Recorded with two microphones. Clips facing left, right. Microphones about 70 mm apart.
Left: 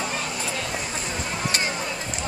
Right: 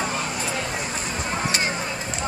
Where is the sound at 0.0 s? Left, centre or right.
Right.